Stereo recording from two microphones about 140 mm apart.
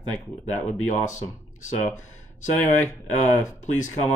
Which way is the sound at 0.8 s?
60° left (ahead or behind).